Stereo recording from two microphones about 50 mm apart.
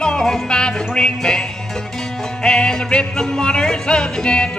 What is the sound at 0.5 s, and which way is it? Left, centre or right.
Music, centre.